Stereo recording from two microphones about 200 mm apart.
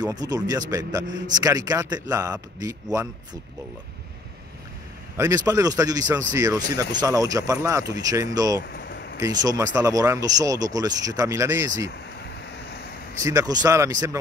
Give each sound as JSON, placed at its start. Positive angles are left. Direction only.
{"t": 0.0, "sound": "speech", "side_deg": -20}
{"t": 5.1, "sound": "speech", "side_deg": -15}
{"t": 8.7, "sound": "a sound", "side_deg": 50}
{"t": 9.2, "sound": "speech", "side_deg": -20}
{"t": 13.2, "sound": "speech", "side_deg": -15}